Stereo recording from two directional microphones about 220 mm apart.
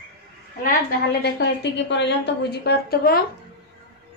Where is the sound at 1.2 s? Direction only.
50° left (ahead or behind).